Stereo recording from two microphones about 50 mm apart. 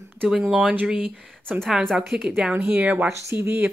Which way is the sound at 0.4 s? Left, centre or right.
Right.